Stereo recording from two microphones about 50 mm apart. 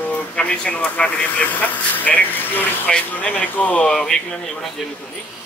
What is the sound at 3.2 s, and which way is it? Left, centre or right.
Speech, left.